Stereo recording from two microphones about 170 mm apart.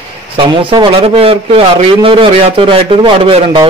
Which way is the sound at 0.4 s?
30° right (ahead or behind).